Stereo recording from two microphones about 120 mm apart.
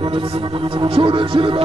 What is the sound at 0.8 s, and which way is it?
Speech, 45° right (ahead or behind).